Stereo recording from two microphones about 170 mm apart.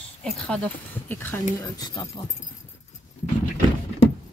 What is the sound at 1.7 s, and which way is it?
Speech, 25° left (ahead or behind).